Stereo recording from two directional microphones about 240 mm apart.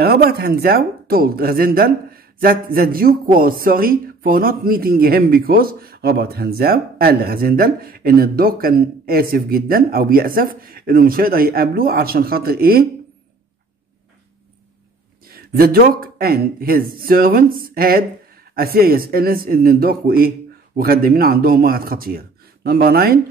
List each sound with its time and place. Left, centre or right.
0.0 s speech: right
15.2 s speech: right